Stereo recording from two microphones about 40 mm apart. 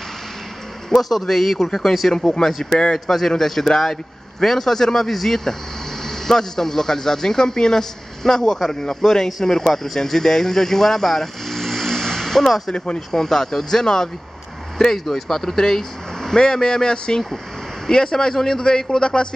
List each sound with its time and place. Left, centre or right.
0.8 s a man's voice: centre
12.7 s speech: left